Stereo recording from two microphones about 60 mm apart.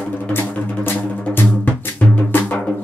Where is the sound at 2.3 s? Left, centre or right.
Left.